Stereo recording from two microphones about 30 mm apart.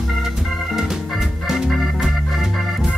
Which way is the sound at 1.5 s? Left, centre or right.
Centre.